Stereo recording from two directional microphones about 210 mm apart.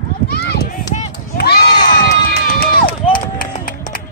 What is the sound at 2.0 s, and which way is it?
Run, 45° left (ahead or behind).